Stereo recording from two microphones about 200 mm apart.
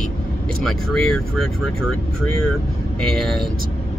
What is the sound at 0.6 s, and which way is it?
Speech, centre (ahead or behind).